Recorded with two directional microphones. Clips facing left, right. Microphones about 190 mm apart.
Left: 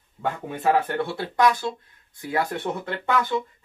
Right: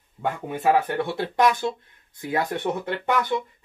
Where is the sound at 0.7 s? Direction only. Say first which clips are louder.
Right 1 dB; 15° right (ahead or behind).